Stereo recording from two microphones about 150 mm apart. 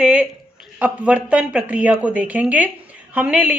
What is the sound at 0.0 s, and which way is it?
Speech, 10° right (ahead or behind).